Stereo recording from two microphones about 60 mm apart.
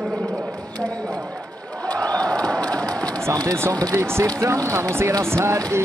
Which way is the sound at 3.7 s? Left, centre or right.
Right.